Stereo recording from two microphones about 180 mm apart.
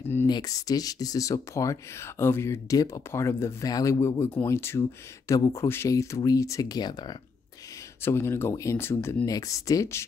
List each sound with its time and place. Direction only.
0.3 s speech: 20° left (ahead or behind)
8.0 s speech: 15° left (ahead or behind)